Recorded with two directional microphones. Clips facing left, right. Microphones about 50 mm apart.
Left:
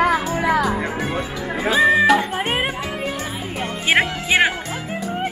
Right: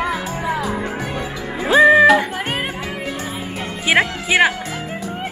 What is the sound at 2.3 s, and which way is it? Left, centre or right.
Music, centre.